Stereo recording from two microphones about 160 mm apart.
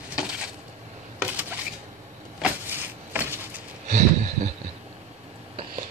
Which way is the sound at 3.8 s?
50° right (ahead or behind).